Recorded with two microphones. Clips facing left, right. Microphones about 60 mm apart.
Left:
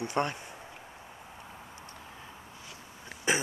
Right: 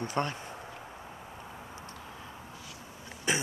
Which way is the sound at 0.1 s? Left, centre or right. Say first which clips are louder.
Left 2 dB; left.